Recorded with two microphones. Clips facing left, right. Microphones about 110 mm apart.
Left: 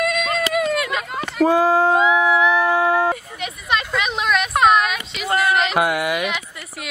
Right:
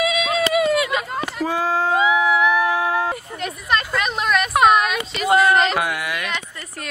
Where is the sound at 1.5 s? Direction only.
15° left (ahead or behind).